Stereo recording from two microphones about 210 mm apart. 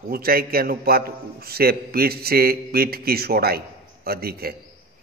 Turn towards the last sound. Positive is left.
turn(degrees=-45)  # may be behind; listen again after turning